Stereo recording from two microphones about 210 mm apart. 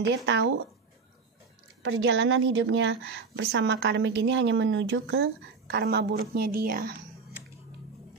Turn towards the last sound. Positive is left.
turn(degrees=-45)  # may be behind; listen again after turning